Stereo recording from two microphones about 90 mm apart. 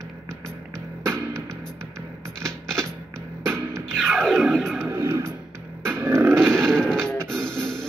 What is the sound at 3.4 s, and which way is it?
Music, 30° right (ahead or behind).